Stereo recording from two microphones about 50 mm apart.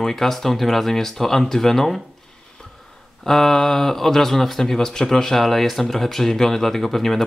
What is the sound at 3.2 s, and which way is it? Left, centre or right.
Speech, centre.